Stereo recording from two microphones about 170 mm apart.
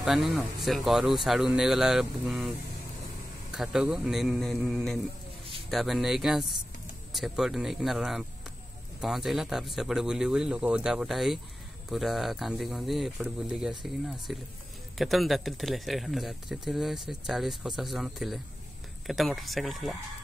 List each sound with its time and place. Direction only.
0.0 s speech: centre (ahead or behind)
3.5 s speech: 5° right (ahead or behind)